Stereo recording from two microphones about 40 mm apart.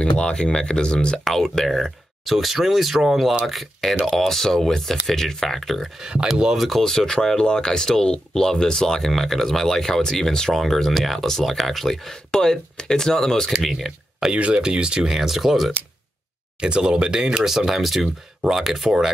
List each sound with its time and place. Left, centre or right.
0.0 s speech: left
1.2 s speech: centre
5.6 s speech: centre
6.0 s speech: centre
6.5 s speech: centre
6.8 s speech: centre
14.3 s speech: right
15.0 s speech: centre
16.6 s speech: right
17.3 s speech: centre